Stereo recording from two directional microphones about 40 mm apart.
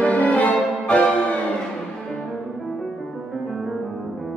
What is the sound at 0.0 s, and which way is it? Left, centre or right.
Music, left.